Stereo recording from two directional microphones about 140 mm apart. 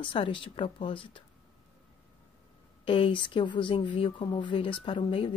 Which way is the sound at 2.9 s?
40° left (ahead or behind).